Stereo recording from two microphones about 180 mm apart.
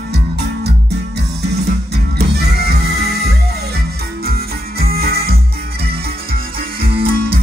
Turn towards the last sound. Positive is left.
turn(degrees=-55)  # may be behind; listen again after turning